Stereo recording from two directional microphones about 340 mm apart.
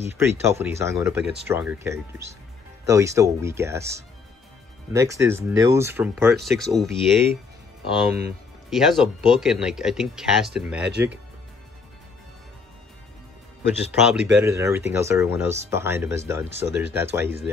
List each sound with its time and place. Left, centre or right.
0.3 s speech: centre
1.2 s speech: right
1.5 s speech: centre
14.0 s speech: centre